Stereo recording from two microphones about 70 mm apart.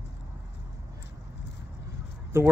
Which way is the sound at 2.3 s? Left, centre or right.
Right.